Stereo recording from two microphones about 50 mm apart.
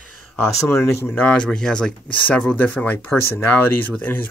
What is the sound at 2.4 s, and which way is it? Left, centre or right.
Speech, left.